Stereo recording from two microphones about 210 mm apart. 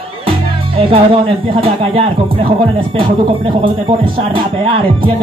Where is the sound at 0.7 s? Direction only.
25° right (ahead or behind).